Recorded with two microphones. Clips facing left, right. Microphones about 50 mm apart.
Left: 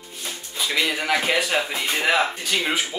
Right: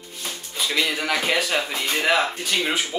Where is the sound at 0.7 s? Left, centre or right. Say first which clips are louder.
Left 1 dB; centre.